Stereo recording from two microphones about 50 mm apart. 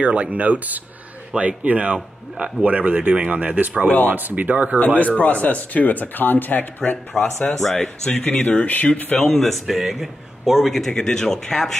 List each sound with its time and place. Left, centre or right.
0.0 s speech: right
4.7 s speech: left
7.7 s speech: centre
8.2 s speech: left
9.4 s a man's voice: centre
10.9 s speech: centre